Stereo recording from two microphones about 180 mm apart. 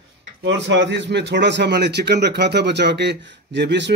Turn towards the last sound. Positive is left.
turn(degrees=-75)  # may be behind; listen again after turning